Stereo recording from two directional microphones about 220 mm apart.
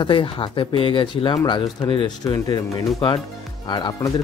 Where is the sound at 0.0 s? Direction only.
20° left (ahead or behind).